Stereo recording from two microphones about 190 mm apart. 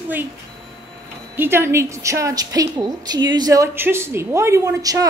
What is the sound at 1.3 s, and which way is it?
A woman's voice, 10° right (ahead or behind).